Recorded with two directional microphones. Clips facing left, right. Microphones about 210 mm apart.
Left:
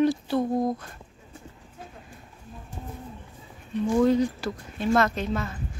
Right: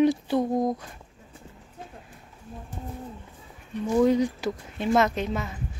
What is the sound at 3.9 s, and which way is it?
Speech, 15° right (ahead or behind).